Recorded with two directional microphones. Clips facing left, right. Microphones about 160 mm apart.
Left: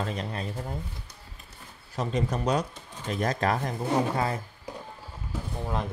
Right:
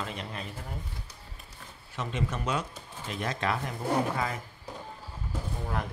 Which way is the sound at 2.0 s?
35° left (ahead or behind).